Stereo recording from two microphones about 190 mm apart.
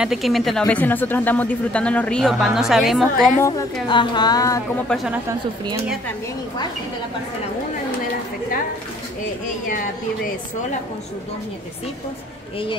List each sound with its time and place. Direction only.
0.0 s speech: centre (ahead or behind)
3.8 s a woman's voice: 25° left (ahead or behind)
4.8 s speech: centre (ahead or behind)